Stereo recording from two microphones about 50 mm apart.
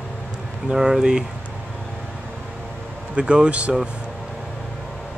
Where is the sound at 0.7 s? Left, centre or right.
Centre.